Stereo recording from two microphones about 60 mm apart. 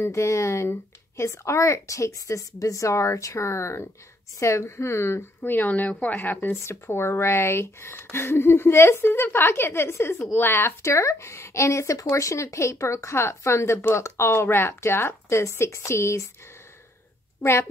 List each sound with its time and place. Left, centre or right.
0.0 s a woman's voice: left
5.4 s speech: left
6.6 s a woman's voice: left
10.1 s speech: left
10.8 s a woman's voice: left
17.4 s a woman's voice: left